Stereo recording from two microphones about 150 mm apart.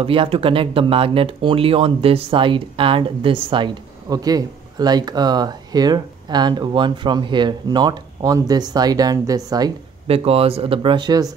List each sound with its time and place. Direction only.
0.0 s speech: 35° right (ahead or behind)
10.0 s speech: 40° right (ahead or behind)